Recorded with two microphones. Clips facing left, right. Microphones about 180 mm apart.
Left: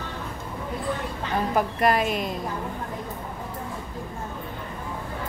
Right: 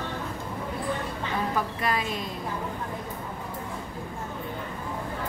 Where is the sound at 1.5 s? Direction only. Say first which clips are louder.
Left 6 dB; 70° left (ahead or behind).